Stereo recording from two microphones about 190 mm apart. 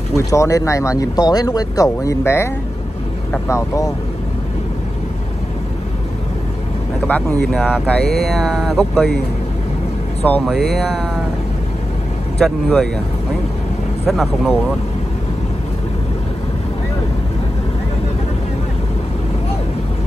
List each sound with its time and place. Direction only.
0.1 s speech: 15° left (ahead or behind)
7.1 s speech: 5° left (ahead or behind)
10.2 s speech: 5° left (ahead or behind)
12.4 s speech: centre (ahead or behind)
14.0 s speech: centre (ahead or behind)